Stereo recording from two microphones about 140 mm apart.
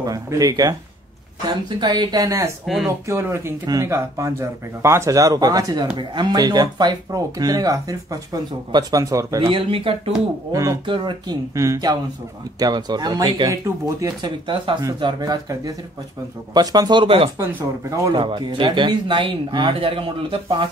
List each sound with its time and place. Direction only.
0.0 s speech: 25° right (ahead or behind)
1.8 s speech: 30° right (ahead or behind)
2.6 s speech: centre (ahead or behind)
3.1 s speech: 15° right (ahead or behind)
9.5 s speech: 40° right (ahead or behind)
10.5 s speech: 20° right (ahead or behind)
10.9 s speech: 35° right (ahead or behind)
11.5 s speech: 20° right (ahead or behind)
14.4 s speech: 35° right (ahead or behind)
17.4 s speech: 20° right (ahead or behind)
18.1 s speech: 35° right (ahead or behind)